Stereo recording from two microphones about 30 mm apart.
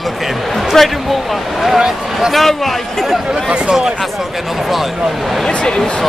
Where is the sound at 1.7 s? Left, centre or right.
Right.